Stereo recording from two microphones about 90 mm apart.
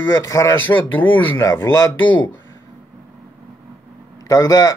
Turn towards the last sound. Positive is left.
turn(degrees=45)  # may be behind; listen again after turning